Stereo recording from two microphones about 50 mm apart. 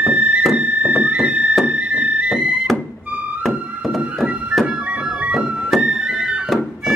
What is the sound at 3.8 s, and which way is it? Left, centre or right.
Music, centre.